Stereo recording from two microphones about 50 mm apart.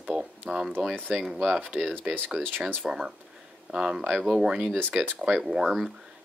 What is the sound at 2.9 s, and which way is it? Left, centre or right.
Speech, centre.